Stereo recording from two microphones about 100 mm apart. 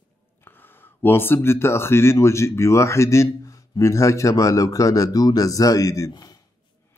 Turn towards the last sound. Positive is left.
turn(degrees=45)  # may be behind; listen again after turning